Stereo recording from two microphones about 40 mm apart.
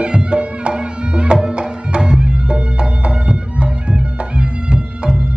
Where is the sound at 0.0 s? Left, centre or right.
Right.